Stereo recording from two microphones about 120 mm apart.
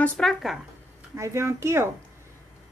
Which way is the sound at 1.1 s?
25° right (ahead or behind).